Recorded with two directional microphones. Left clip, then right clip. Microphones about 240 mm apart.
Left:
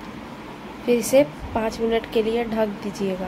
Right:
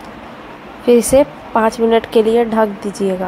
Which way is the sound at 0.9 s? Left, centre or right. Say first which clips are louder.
Right 7 dB; centre.